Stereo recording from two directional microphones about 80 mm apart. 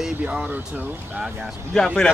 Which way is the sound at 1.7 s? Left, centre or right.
Centre.